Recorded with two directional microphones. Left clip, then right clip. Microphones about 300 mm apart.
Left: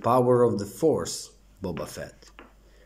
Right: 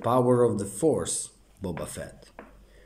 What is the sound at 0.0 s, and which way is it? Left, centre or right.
A man's voice, centre.